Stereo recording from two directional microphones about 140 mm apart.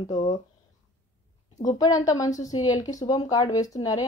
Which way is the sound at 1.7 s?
25° left (ahead or behind).